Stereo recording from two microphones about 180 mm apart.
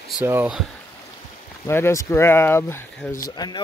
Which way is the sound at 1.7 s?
15° left (ahead or behind).